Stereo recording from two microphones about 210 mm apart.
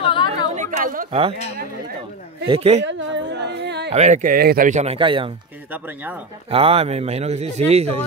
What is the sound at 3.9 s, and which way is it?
Speech, 35° right (ahead or behind).